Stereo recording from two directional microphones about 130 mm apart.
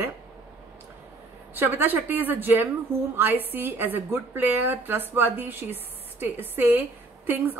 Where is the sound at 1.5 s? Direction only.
15° right (ahead or behind).